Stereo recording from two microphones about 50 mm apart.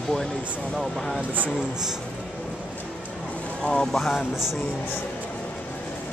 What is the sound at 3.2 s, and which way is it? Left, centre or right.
Vehicle, left.